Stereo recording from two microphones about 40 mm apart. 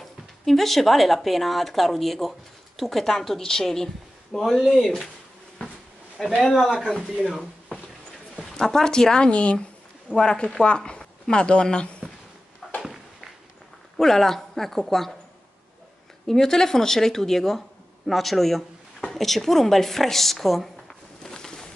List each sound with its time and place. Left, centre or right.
0.5 s speech: centre
6.4 s speech: centre
8.5 s speech: centre; by 9.7 s left
10.1 s speech: centre
12.8 s a sound: centre
13.9 s speech: centre
16.3 s speech: centre
21.2 s a sound: centre